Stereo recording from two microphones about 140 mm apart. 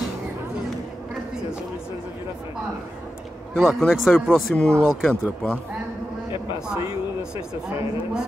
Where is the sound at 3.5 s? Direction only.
Centre (ahead or behind).